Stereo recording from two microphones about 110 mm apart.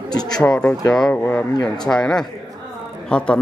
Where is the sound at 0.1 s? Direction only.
40° left (ahead or behind).